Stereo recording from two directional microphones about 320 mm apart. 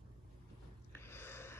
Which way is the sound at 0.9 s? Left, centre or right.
Centre.